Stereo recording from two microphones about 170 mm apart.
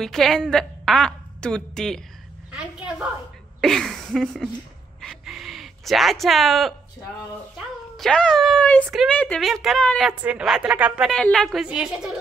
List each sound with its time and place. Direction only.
0.0 s a woman's voice: centre (ahead or behind)
3.6 s speech: centre (ahead or behind)
5.0 s gasp: centre (ahead or behind)
7.5 s a woman's voice: 5° left (ahead or behind)